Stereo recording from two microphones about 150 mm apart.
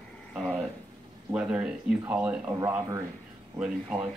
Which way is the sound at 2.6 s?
20° right (ahead or behind).